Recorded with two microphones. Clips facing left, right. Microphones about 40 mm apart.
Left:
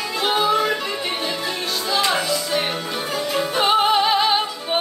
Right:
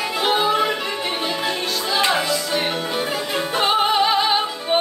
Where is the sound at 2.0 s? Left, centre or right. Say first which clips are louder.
Right 1 dB; centre.